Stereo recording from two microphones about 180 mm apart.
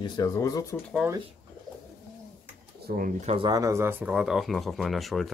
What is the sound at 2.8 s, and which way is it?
Speech, 55° right (ahead or behind).